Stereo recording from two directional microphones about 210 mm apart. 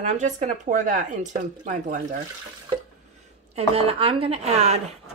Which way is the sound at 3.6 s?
30° right (ahead or behind).